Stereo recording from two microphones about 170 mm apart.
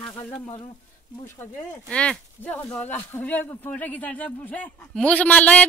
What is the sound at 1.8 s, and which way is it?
Speech, 5° left (ahead or behind).